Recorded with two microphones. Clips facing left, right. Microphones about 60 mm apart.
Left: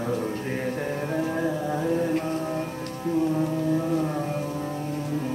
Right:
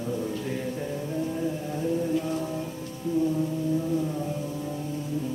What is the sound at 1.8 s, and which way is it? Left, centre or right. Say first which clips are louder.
Music: left 1 dB; left.